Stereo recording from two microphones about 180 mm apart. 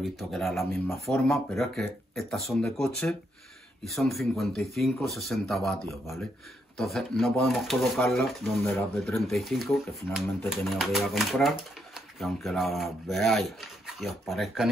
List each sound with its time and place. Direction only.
0.0 s speech: centre (ahead or behind)